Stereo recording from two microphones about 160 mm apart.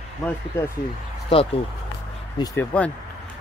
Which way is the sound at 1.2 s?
35° left (ahead or behind).